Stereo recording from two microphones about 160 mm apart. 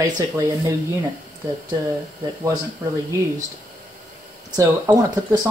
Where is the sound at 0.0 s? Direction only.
20° right (ahead or behind).